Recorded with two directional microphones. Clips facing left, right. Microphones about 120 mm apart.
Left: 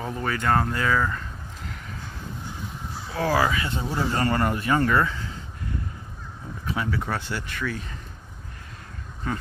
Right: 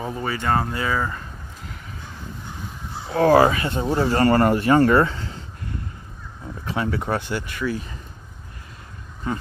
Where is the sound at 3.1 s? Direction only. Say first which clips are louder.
Right 8 dB; 50° right (ahead or behind).